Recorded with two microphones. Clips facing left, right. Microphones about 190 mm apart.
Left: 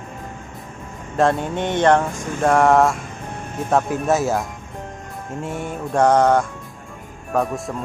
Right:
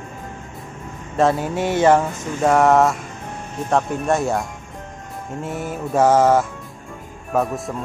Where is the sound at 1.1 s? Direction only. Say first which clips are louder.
Even; centre (ahead or behind).